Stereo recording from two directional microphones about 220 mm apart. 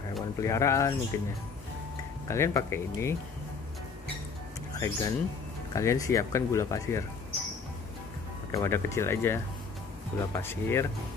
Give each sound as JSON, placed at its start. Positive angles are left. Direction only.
{"t": 0.4, "sound": "speech", "side_deg": 15}
{"t": 2.2, "sound": "speech", "side_deg": 15}
{"t": 4.7, "sound": "speech", "side_deg": 10}
{"t": 8.5, "sound": "speech", "side_deg": 10}